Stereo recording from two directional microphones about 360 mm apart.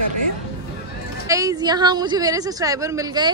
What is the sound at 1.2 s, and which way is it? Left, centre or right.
A woman's voice, centre.